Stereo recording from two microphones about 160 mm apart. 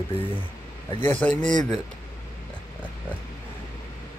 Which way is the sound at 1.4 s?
50° right (ahead or behind).